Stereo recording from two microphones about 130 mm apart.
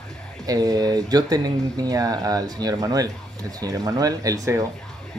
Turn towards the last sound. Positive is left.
turn(degrees=-25)  # may be behind; listen again after turning